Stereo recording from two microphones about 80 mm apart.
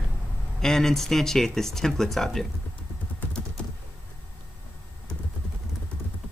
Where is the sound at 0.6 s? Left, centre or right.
Centre.